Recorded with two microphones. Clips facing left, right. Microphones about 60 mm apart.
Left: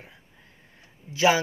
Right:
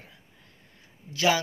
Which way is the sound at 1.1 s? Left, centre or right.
Centre.